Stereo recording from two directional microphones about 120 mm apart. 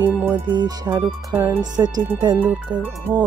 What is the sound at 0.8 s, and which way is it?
Music, 25° right (ahead or behind).